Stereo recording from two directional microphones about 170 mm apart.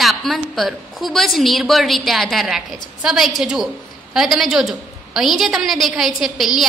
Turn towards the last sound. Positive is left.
turn(degrees=0)  # may be behind; listen again after turning